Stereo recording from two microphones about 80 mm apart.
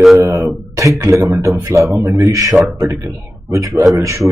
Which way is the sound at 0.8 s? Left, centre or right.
Right.